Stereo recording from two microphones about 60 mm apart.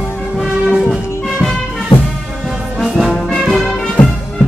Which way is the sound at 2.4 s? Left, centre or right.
Centre.